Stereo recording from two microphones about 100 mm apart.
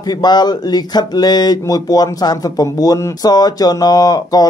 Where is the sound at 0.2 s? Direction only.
45° left (ahead or behind).